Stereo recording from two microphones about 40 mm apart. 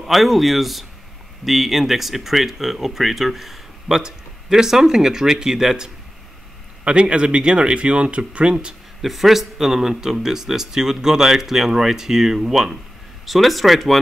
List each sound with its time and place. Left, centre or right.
0.0 s speech: centre
6.8 s a man's voice: right
9.0 s speech: centre